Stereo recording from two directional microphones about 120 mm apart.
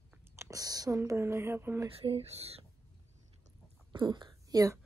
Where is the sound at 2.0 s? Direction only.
55° right (ahead or behind).